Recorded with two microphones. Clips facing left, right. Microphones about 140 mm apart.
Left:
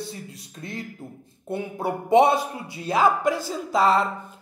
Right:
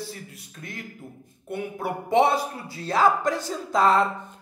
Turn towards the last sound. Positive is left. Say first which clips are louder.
# even
turn(degrees=0)  # may be behind; listen again after turning